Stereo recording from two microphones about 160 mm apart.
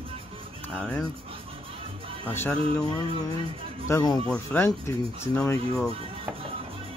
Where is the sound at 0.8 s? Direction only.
5° left (ahead or behind).